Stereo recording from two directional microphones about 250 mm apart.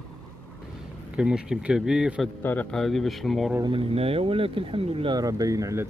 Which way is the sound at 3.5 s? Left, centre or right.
Centre.